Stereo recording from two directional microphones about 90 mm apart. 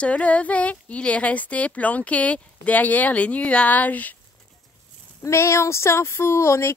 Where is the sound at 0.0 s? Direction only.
15° left (ahead or behind).